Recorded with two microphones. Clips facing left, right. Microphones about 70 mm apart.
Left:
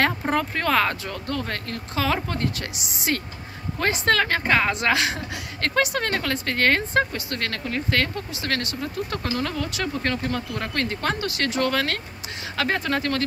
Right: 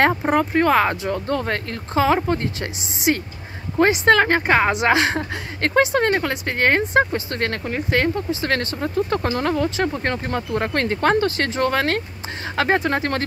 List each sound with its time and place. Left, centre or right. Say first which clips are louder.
0.2 s a woman's voice: right 6 dB; centre